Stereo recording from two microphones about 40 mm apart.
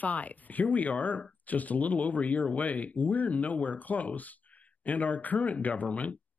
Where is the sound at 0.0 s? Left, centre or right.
Left.